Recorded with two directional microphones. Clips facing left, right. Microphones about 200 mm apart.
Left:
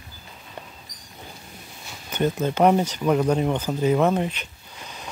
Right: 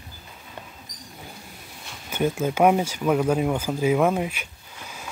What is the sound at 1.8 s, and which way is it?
Speech, 10° right (ahead or behind).